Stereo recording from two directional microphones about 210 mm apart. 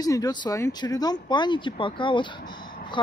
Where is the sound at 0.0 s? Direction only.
15° left (ahead or behind).